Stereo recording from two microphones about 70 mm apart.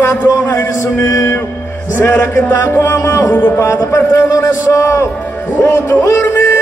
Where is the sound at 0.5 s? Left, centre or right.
Left.